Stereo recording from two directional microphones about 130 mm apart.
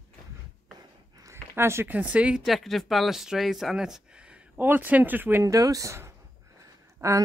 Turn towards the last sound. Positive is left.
turn(degrees=-25)  # may be behind; listen again after turning